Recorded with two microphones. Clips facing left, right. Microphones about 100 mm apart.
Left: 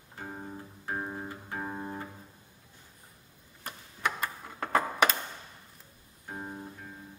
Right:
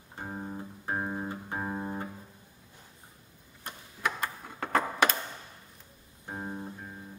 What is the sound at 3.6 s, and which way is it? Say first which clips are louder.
Tick-tock: even; centre (ahead or behind).